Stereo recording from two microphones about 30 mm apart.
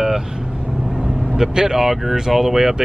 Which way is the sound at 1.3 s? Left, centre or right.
Centre.